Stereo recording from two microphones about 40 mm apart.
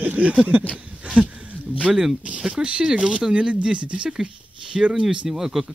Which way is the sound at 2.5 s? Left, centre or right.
Right.